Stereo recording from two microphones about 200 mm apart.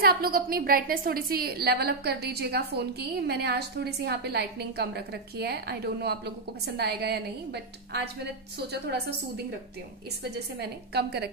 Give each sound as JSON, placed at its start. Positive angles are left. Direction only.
{"t": 0.0, "sound": "a woman's voice", "side_deg": -50}